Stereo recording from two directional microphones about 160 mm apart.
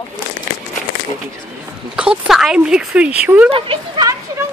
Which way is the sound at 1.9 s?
5° right (ahead or behind).